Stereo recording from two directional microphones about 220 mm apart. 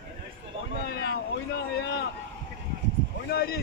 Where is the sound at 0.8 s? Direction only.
50° left (ahead or behind).